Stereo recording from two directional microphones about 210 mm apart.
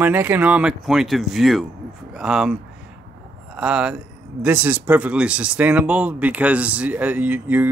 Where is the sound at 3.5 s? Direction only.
5° right (ahead or behind).